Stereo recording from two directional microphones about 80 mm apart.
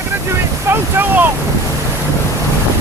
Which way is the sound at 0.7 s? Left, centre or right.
Right.